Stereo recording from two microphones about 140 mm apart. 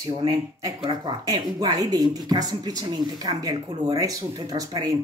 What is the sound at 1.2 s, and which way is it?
Speech, 30° right (ahead or behind).